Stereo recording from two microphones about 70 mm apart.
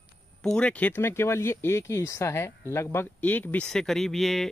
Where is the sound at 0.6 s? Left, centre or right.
Centre.